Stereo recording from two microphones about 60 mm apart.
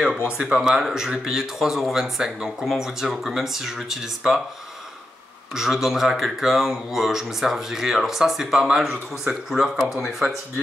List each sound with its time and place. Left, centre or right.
0.3 s speech: centre
5.5 s speech: centre